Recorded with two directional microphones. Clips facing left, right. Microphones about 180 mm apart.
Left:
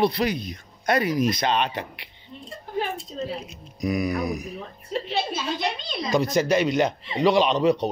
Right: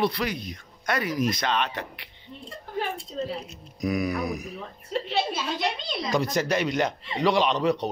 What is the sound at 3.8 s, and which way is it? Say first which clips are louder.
Speech: left 2 dB; 15° left (ahead or behind).